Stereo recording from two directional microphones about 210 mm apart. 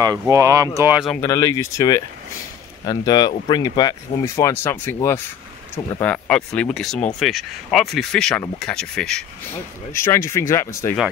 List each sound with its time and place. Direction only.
0.3 s speech: 15° right (ahead or behind)
1.2 s speech: 15° left (ahead or behind)